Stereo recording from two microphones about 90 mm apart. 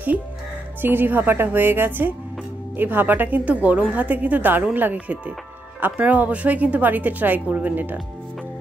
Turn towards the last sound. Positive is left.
turn(degrees=-20)  # may be behind; listen again after turning